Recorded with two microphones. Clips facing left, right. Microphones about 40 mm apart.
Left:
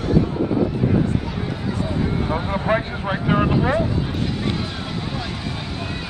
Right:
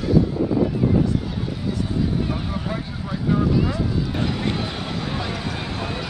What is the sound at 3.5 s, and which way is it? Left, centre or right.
Speech, left.